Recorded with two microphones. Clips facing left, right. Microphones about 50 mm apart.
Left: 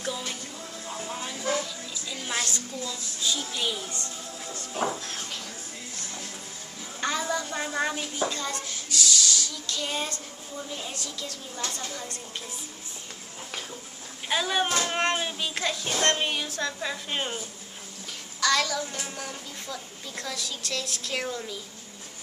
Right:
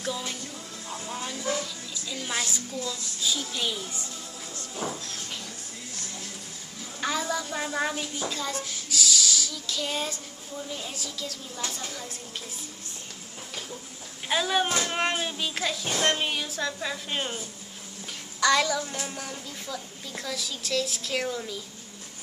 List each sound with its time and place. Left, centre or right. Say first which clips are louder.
0.0 s music: even; centre
0.8 s a sound: even; centre
2.8 s speech: right 2 dB; centre
7.0 s speech: even; centre
14.3 s speech: right 1 dB; centre
18.4 s a sound: right 2 dB; centre
18.8 s speech: right 1 dB; centre